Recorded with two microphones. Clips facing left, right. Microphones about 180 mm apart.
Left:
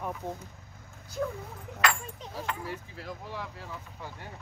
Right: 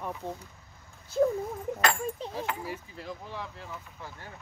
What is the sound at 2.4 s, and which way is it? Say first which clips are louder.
Speech: right 2 dB; centre (ahead or behind).